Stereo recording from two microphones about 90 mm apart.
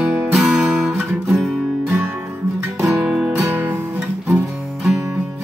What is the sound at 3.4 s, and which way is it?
Music, 20° right (ahead or behind).